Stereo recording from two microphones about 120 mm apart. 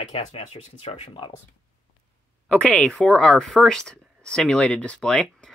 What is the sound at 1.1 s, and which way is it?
Speech, 45° left (ahead or behind).